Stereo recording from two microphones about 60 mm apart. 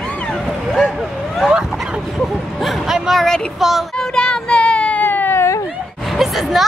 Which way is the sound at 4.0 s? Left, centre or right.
Centre.